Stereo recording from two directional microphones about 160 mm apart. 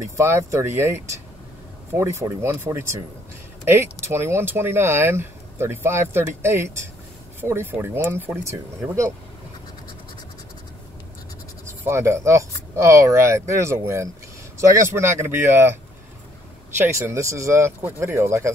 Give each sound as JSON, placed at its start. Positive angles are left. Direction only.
{"t": 0.2, "sound": "speech", "side_deg": -15}
{"t": 11.6, "sound": "speech", "side_deg": -15}
{"t": 16.8, "sound": "speech", "side_deg": -15}